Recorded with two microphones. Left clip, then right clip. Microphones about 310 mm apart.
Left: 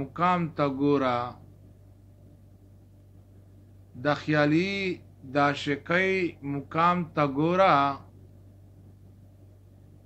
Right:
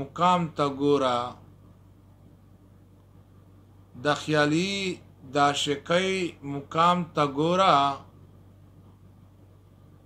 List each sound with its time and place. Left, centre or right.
0.0 s a man's voice: right
4.0 s a man's voice: right